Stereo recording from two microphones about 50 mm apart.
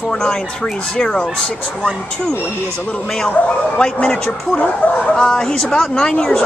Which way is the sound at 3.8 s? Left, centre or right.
Centre.